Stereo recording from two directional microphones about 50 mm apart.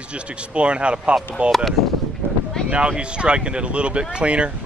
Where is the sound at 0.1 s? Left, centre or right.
Right.